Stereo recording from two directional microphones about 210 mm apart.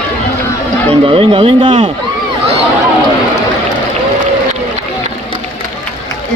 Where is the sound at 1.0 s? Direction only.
25° right (ahead or behind).